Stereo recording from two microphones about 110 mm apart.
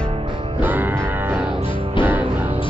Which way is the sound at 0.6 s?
15° right (ahead or behind).